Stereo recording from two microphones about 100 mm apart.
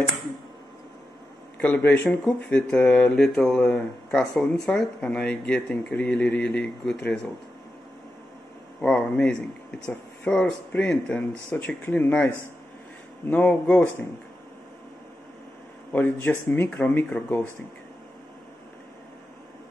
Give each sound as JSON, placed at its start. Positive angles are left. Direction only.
{"t": 1.6, "sound": "a man's voice", "side_deg": 20}
{"t": 8.8, "sound": "speech", "side_deg": 10}
{"t": 10.7, "sound": "speech", "side_deg": 15}
{"t": 13.3, "sound": "speech", "side_deg": 15}
{"t": 15.9, "sound": "speech", "side_deg": 20}